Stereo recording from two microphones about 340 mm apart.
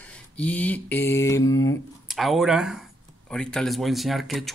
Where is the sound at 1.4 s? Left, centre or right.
Left.